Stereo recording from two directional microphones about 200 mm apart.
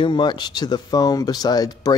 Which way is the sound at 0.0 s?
20° left (ahead or behind).